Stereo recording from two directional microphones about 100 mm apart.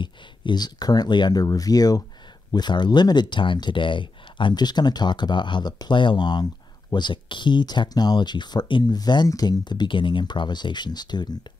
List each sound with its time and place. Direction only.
0.0 s speech: 50° left (ahead or behind)